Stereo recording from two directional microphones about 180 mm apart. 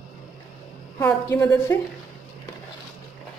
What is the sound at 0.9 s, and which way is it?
Speech, 10° left (ahead or behind).